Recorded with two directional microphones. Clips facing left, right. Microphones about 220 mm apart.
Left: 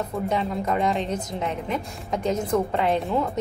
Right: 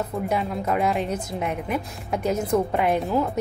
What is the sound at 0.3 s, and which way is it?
Speech, 10° right (ahead or behind).